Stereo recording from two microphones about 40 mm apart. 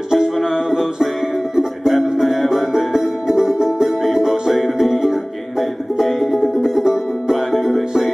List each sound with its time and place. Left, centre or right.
0.1 s music: centre